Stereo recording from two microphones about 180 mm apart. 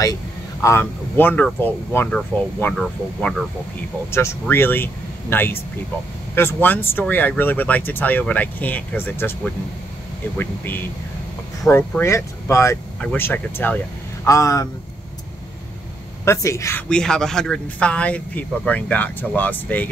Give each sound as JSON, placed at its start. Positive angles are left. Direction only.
{"t": 0.0, "sound": "speech", "side_deg": 15}
{"t": 16.3, "sound": "speech", "side_deg": 15}
{"t": 16.9, "sound": "speech", "side_deg": 5}